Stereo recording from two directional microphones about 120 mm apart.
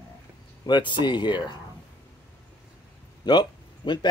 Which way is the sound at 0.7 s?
40° left (ahead or behind).